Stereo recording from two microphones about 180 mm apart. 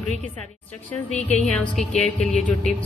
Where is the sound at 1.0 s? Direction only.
40° left (ahead or behind).